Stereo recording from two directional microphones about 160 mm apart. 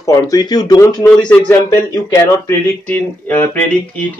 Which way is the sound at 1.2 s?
10° left (ahead or behind).